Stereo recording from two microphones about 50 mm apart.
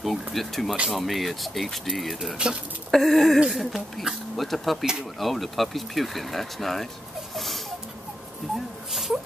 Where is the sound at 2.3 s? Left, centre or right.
Centre.